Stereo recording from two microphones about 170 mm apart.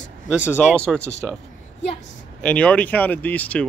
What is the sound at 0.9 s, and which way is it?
Speech, 5° right (ahead or behind).